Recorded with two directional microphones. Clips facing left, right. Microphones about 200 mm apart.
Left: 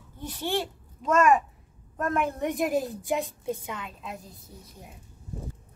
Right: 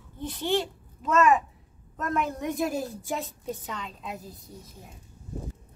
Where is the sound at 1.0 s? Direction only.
Centre (ahead or behind).